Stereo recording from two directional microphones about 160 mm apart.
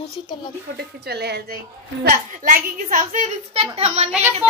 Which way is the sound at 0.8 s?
90° right.